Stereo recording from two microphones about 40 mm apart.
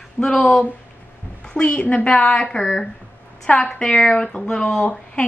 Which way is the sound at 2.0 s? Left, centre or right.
Left.